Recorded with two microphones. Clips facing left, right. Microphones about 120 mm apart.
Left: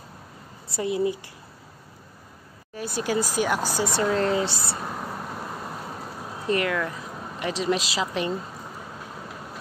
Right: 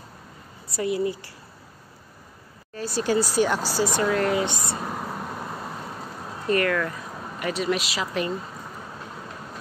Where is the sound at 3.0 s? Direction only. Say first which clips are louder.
Right 3 dB; 15° left (ahead or behind); by 4.7 s 35° left (ahead or behind).